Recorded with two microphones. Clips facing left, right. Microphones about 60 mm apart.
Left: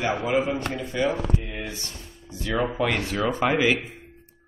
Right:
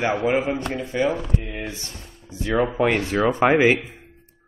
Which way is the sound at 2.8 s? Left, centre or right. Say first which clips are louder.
Right 5 dB; right.